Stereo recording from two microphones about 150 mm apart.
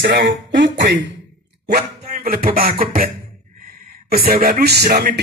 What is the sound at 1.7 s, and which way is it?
Beatboxing, 90° right.